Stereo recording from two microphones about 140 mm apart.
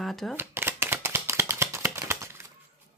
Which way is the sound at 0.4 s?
15° right (ahead or behind).